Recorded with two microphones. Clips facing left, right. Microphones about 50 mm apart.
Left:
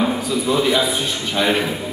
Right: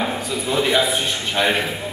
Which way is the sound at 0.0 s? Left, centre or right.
Centre.